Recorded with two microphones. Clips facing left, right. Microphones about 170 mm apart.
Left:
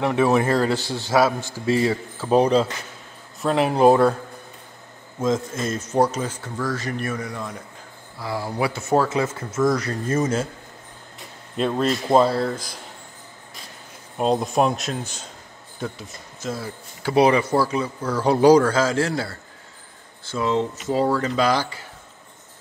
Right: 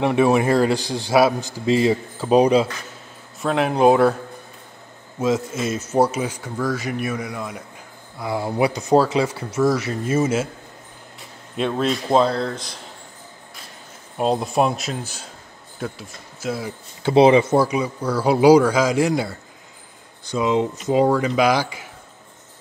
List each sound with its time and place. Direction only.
0.0 s a man's voice: 15° right (ahead or behind)
3.3 s speech: centre (ahead or behind)
5.2 s a man's voice: 5° right (ahead or behind)
11.5 s speech: centre (ahead or behind)
14.1 s speech: centre (ahead or behind)
17.0 s a man's voice: 25° right (ahead or behind)